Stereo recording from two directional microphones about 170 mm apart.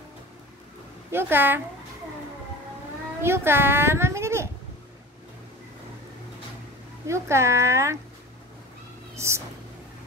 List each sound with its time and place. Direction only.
1.1 s speech: 10° right (ahead or behind)
3.2 s a child's voice: 15° right (ahead or behind)
7.1 s speech: 15° right (ahead or behind)
9.1 s speech: 15° right (ahead or behind)